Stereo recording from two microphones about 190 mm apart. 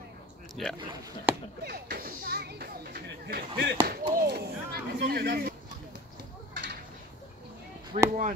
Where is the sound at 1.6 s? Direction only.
55° right (ahead or behind).